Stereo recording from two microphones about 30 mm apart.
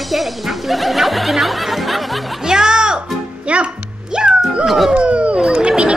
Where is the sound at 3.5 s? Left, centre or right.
Right.